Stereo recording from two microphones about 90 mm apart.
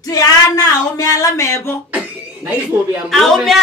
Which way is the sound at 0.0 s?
45° left (ahead or behind).